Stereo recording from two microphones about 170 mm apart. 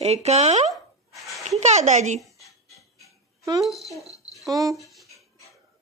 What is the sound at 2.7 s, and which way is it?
Ratchet, 20° left (ahead or behind).